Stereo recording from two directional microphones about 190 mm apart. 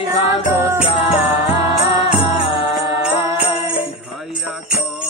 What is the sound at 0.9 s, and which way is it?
Music, 30° left (ahead or behind).